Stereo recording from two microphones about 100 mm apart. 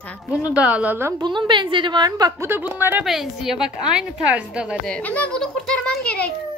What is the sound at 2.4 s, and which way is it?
Speech, 20° right (ahead or behind).